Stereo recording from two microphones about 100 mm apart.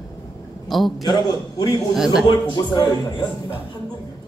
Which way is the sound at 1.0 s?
45° left (ahead or behind).